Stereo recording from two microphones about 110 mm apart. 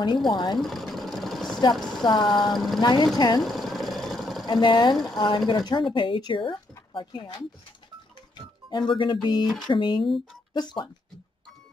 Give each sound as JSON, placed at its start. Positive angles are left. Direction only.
{"t": 0.3, "sound": "speech", "side_deg": 45}
{"t": 0.6, "sound": "sewing machine", "side_deg": 0}
{"t": 1.8, "sound": "speech", "side_deg": 5}
{"t": 2.0, "sound": "speech", "side_deg": 40}
{"t": 2.5, "sound": "speech", "side_deg": 0}
{"t": 2.8, "sound": "speech", "side_deg": 40}
{"t": 3.4, "sound": "a sound", "side_deg": 0}
{"t": 4.5, "sound": "speech", "side_deg": 40}
{"t": 8.6, "sound": "speech", "side_deg": 45}